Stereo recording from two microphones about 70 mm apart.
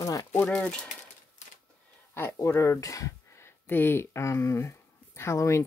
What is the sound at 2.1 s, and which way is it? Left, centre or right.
Speech, left.